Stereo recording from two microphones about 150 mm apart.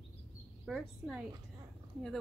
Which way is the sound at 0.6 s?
Centre (ahead or behind).